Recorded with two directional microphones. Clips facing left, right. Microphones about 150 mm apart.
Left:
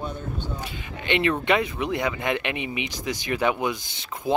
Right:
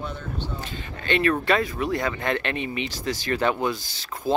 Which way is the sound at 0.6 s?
15° left (ahead or behind).